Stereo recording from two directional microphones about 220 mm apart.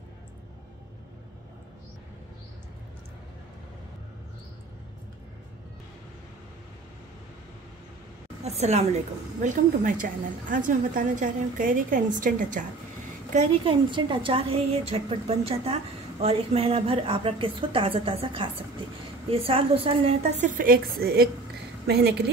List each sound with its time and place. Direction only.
8.5 s a woman's voice: 30° right (ahead or behind); by 22.3 s 45° right (ahead or behind)